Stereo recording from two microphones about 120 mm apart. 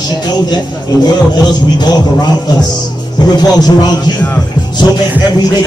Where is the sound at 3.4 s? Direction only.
35° left (ahead or behind).